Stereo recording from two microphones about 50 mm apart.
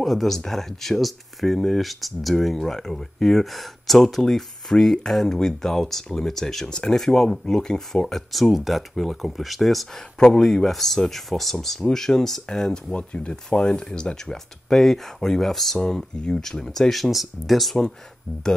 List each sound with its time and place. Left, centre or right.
0.0 s speech: centre
10.1 s speech: centre
14.3 s speech: centre